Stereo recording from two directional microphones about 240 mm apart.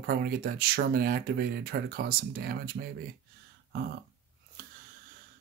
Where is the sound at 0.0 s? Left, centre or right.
Right.